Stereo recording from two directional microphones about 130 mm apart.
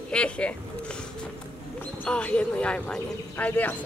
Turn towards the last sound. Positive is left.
turn(degrees=10)  # may be behind; listen again after turning